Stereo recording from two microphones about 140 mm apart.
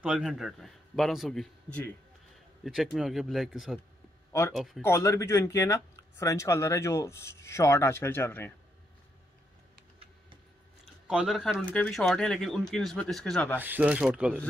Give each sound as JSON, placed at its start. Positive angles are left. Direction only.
{"t": 0.0, "sound": "speech", "side_deg": -5}
{"t": 4.3, "sound": "speech", "side_deg": 20}
{"t": 4.6, "sound": "speech", "side_deg": 0}
{"t": 4.8, "sound": "speech", "side_deg": 20}
{"t": 11.1, "sound": "speech", "side_deg": -5}
{"t": 11.6, "sound": "speech", "side_deg": 10}
{"t": 13.6, "sound": "speech", "side_deg": -10}